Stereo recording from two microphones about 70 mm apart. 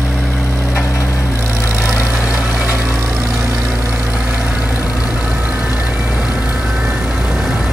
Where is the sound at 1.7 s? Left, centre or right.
Right.